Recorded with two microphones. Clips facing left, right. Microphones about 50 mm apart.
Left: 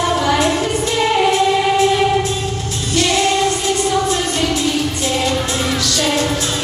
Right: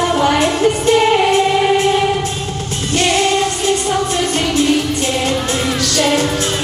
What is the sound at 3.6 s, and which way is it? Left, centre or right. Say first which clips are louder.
Music: even; right.